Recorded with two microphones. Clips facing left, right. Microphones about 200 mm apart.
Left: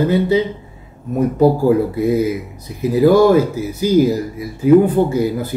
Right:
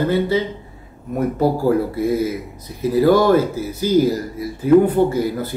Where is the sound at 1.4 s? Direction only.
15° left (ahead or behind).